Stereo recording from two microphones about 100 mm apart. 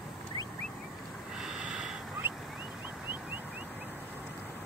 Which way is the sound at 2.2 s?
20° right (ahead or behind).